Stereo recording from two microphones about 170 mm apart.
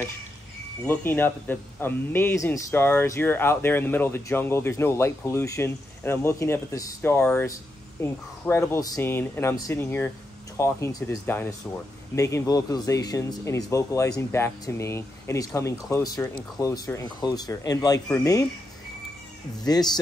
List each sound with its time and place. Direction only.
0.8 s speech: 10° left (ahead or behind)
19.6 s speech: 25° left (ahead or behind)